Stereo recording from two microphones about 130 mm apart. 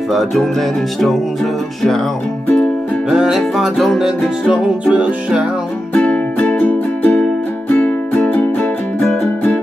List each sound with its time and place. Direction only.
0.1 s music: centre (ahead or behind)
3.1 s music: 5° right (ahead or behind)
5.9 s music: 10° left (ahead or behind)